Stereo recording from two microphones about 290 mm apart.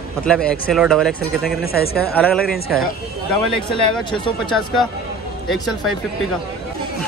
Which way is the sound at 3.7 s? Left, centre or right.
Centre.